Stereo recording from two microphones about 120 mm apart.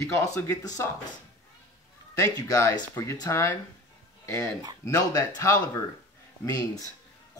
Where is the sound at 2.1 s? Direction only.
30° left (ahead or behind).